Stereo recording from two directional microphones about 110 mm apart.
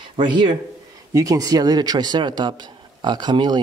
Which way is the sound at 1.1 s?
30° right (ahead or behind).